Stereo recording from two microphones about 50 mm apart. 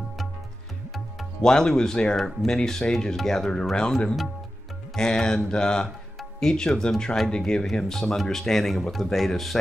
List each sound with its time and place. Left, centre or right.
1.4 s speech: centre